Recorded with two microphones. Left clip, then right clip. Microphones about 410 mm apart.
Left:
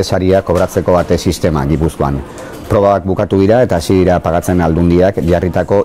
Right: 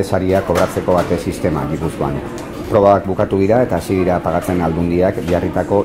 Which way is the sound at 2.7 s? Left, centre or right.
Left.